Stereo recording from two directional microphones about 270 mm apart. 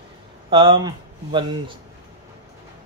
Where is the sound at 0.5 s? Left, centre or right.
Centre.